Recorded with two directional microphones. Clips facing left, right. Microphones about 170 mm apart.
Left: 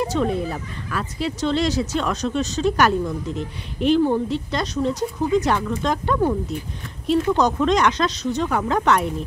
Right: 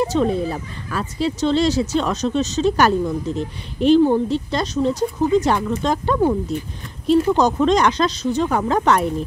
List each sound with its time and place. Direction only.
0.2 s speech: 30° right (ahead or behind)